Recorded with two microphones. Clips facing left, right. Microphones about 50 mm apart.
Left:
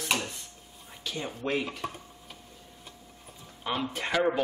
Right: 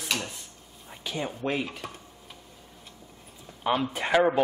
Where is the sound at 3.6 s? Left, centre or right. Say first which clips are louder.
Right 5 dB; centre.